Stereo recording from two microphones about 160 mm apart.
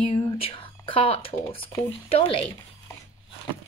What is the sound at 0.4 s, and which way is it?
Speech, 35° left (ahead or behind).